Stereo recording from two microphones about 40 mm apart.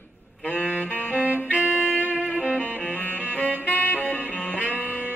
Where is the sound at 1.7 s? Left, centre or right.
Left.